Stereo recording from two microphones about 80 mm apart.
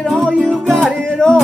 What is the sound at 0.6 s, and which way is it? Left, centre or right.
Music, centre.